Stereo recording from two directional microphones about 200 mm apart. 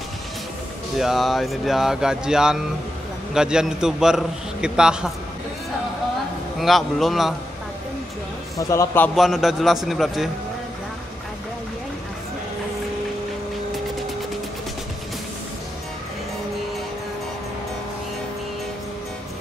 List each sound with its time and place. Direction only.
0.9 s a man's voice: centre (ahead or behind)
6.6 s a man's voice: centre (ahead or behind)
8.5 s a man's voice: 15° left (ahead or behind)
9.1 s a man's voice: centre (ahead or behind)